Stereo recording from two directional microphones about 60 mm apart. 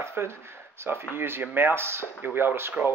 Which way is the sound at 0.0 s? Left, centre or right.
Right.